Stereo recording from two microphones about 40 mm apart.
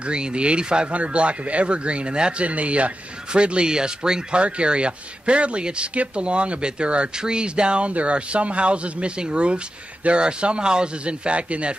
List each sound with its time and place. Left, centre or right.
0.0 s speech: right
2.4 s speech: right